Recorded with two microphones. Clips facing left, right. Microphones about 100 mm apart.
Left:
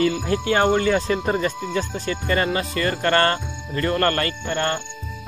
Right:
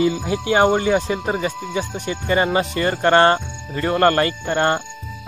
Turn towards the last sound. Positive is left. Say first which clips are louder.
# right 5 dB
turn(degrees=-35)  # may be behind; listen again after turning